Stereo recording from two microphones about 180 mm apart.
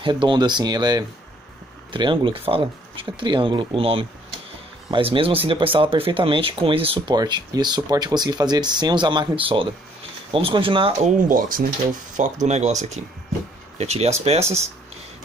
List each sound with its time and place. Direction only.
0.0 s speech: 25° right (ahead or behind)
11.1 s speech: 50° right (ahead or behind)
12.4 s speech: 40° right (ahead or behind)